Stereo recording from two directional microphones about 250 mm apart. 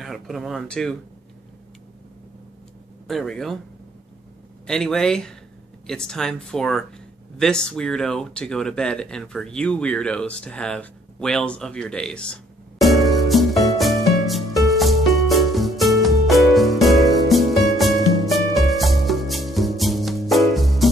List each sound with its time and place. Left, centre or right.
0.0 s speech: centre
3.1 s speech: centre
4.6 s speech: centre
12.8 s music: centre